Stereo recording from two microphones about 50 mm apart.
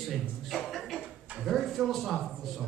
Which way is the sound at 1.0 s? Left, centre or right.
Right.